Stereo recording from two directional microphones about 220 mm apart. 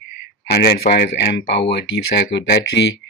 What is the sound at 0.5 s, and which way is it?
Speech, 45° left (ahead or behind).